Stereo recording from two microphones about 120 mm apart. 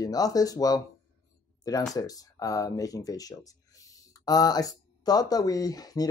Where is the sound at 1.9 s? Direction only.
30° left (ahead or behind).